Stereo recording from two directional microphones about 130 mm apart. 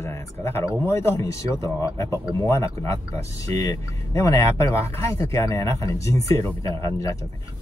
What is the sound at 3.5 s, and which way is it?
Speech, 25° left (ahead or behind).